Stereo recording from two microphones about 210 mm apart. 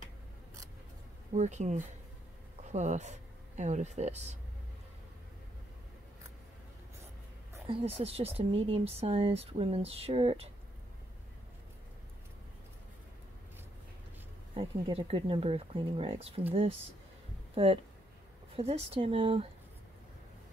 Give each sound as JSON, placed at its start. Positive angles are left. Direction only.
{"t": 1.3, "sound": "speech", "side_deg": -35}
{"t": 7.6, "sound": "speech", "side_deg": -25}
{"t": 14.5, "sound": "speech", "side_deg": -25}
{"t": 18.6, "sound": "speech", "side_deg": -30}